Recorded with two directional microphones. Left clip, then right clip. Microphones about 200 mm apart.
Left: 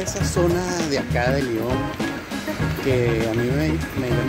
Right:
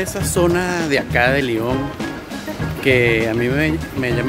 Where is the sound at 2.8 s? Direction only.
15° right (ahead or behind).